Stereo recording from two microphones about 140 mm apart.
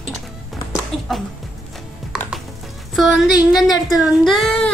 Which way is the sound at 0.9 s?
45° left (ahead or behind).